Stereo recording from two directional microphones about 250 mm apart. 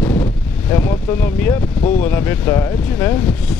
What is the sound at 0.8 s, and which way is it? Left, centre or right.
Speech, centre.